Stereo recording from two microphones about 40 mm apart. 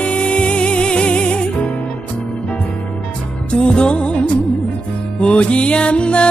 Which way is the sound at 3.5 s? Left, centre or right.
Left.